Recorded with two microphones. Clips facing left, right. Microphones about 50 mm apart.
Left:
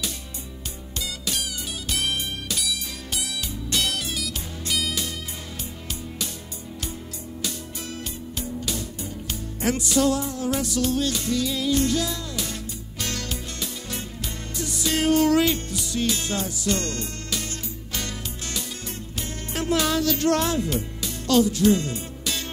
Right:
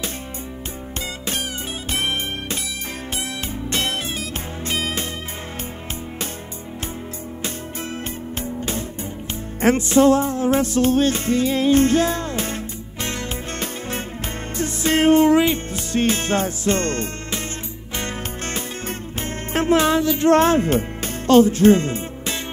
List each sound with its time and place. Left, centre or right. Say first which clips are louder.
1.9 s music: right 3 dB; right
3.7 s music: right 2 dB; right
7.4 s music: right 4 dB; right
20.3 s speech: right 8 dB; right